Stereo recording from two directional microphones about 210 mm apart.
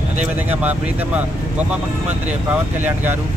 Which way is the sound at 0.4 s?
10° right (ahead or behind).